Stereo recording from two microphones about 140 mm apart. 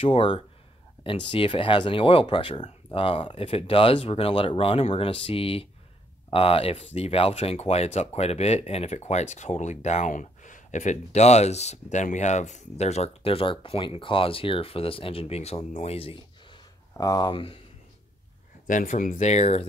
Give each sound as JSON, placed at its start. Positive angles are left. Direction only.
{"t": 0.0, "sound": "speech", "side_deg": 40}
{"t": 16.9, "sound": "speech", "side_deg": 30}
{"t": 18.7, "sound": "speech", "side_deg": 70}